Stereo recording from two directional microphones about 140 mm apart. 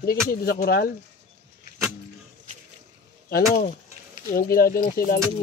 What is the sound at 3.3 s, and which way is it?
Speech, 90° left.